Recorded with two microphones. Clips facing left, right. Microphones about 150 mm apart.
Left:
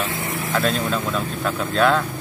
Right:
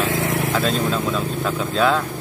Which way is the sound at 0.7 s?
5° left (ahead or behind).